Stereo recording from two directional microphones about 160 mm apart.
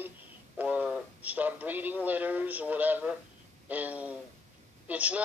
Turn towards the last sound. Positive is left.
turn(degrees=-10)  # may be behind; listen again after turning